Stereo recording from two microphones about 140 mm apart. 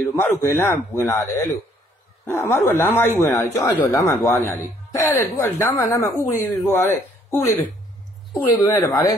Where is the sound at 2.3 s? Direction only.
15° left (ahead or behind).